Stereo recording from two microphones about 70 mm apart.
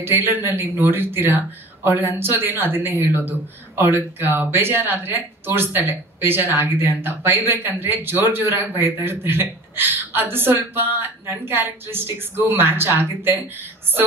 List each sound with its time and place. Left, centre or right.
0.0 s speech: right